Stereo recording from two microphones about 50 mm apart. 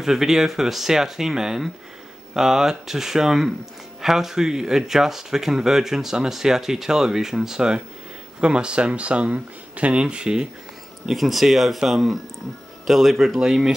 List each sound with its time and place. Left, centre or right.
0.0 s speech: centre; by 10.0 s right
10.0 s speech: centre
11.1 s speech: centre